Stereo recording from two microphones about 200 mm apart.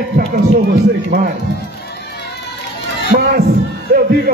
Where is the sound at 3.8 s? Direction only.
50° right (ahead or behind).